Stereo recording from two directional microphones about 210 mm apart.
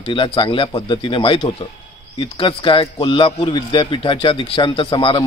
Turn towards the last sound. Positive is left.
turn(degrees=25)  # may be behind; listen again after turning